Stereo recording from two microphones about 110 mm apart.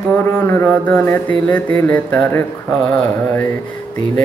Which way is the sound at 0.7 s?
15° left (ahead or behind).